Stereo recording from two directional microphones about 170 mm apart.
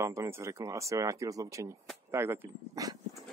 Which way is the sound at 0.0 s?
15° right (ahead or behind).